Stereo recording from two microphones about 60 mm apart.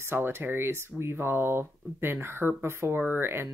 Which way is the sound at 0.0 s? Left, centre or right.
Right.